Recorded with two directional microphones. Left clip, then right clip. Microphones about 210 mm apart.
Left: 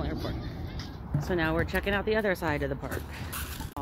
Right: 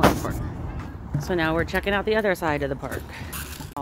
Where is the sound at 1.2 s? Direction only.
15° right (ahead or behind).